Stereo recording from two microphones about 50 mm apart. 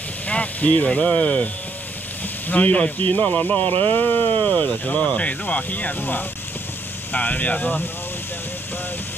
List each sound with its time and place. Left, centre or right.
0.3 s vehicle: left
0.8 s speech: left